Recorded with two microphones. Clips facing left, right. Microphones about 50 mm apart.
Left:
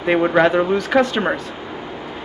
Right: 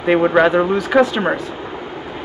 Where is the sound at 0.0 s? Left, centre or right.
Centre.